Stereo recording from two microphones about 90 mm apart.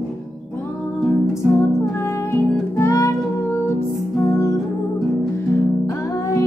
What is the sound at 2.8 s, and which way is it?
Music, 35° left (ahead or behind).